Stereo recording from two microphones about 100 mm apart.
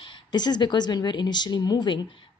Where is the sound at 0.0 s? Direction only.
45° left (ahead or behind).